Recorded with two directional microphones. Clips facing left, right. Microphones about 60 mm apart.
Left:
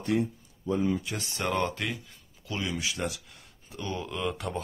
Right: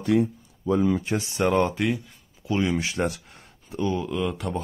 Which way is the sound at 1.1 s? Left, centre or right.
Centre.